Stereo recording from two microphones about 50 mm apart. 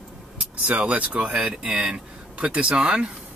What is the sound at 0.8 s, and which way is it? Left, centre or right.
Speech, right.